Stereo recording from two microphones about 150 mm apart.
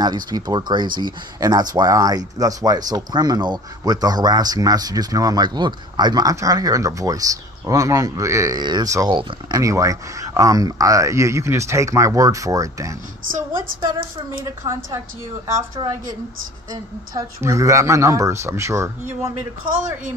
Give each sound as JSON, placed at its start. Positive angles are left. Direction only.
{"t": 0.0, "sound": "speech", "side_deg": -30}
{"t": 17.1, "sound": "speech", "side_deg": -20}